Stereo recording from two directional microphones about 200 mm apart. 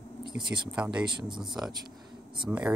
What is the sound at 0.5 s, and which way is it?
Speech, 5° right (ahead or behind).